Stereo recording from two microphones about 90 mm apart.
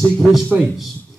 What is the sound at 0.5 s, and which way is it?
Speech, 10° right (ahead or behind).